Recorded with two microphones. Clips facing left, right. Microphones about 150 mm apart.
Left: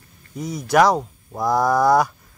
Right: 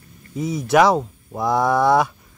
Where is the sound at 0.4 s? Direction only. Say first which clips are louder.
Right 1 dB; 5° right (ahead or behind).